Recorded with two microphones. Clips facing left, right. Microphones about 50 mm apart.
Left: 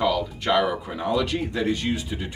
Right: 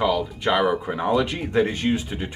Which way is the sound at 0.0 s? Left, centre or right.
Centre.